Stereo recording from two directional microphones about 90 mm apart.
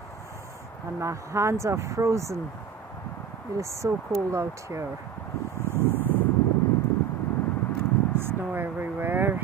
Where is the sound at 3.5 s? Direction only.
35° right (ahead or behind).